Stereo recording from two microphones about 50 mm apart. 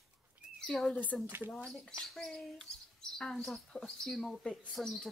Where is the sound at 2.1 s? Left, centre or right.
Centre.